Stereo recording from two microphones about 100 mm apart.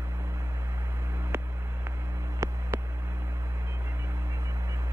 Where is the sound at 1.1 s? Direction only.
25° right (ahead or behind).